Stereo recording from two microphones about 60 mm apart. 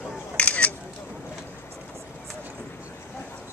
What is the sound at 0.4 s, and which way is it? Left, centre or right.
Single-lens reflex camera, left.